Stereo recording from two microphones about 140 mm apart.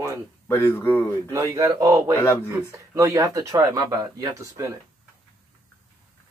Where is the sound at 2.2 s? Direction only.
20° left (ahead or behind).